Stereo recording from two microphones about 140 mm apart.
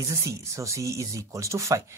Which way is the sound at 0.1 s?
20° right (ahead or behind).